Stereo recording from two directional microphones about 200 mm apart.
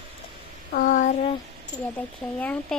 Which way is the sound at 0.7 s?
45° left (ahead or behind).